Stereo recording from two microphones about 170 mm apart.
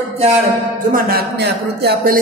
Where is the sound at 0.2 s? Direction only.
40° right (ahead or behind).